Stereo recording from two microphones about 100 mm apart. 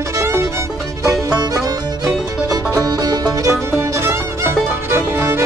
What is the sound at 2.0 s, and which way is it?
Music, 35° right (ahead or behind).